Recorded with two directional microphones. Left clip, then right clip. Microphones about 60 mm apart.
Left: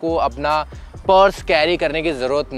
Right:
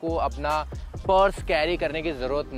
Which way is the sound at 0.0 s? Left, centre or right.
Left.